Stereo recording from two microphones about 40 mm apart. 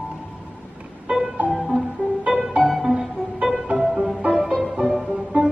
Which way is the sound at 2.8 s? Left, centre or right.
Centre.